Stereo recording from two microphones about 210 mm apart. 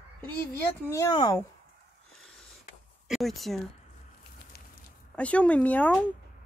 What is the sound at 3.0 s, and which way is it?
Speech, centre (ahead or behind).